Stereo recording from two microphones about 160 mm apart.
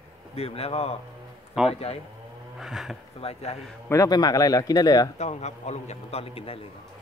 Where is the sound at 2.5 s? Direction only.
Centre (ahead or behind).